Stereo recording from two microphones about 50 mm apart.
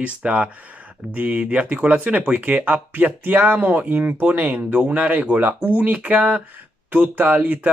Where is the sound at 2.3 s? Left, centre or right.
Right.